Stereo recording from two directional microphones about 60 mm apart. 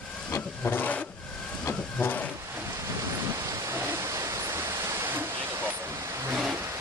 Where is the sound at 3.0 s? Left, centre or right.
Right.